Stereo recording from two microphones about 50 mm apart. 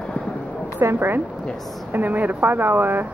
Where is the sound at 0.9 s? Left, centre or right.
Right.